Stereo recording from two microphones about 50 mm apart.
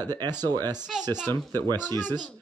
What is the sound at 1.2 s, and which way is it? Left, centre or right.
Speech, left.